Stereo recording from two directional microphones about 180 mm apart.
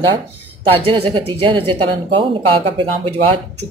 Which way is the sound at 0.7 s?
30° right (ahead or behind).